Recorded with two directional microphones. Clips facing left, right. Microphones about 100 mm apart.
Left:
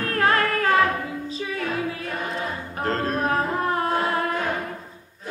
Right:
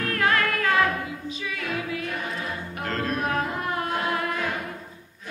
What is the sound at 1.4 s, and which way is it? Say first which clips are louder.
Music: left 6 dB; 35° left (ahead or behind).